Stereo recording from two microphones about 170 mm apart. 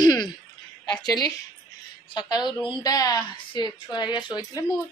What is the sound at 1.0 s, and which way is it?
A woman's voice, 20° left (ahead or behind).